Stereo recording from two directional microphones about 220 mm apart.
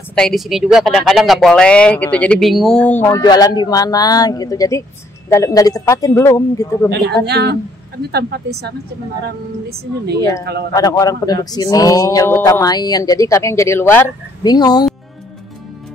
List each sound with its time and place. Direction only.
0.1 s speech: centre (ahead or behind)
7.2 s speech: 50° right (ahead or behind)
10.7 s speech: 15° left (ahead or behind)